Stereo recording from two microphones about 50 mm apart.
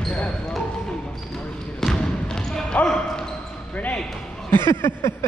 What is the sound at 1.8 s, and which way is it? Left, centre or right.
Basketball bounce, centre.